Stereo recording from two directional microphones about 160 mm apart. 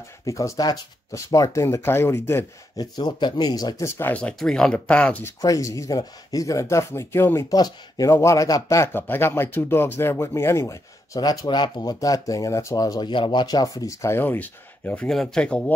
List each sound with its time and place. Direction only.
0.2 s speech: 20° left (ahead or behind)
5.4 s speech: 20° left (ahead or behind)